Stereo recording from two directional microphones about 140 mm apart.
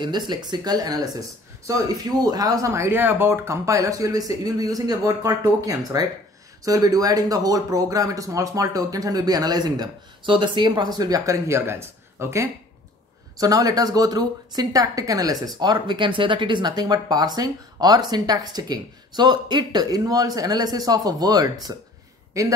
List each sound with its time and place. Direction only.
0.3 s speech: 30° right (ahead or behind)